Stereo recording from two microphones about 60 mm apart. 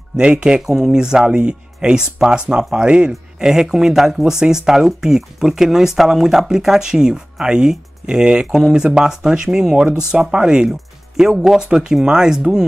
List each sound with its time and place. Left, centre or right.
0.2 s speech: centre